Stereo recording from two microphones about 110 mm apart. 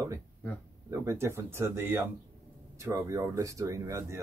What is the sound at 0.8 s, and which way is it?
Speech, 25° right (ahead or behind).